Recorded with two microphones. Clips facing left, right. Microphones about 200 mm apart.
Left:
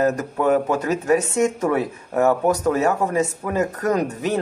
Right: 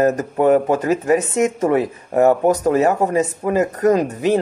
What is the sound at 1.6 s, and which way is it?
Speech, 40° right (ahead or behind).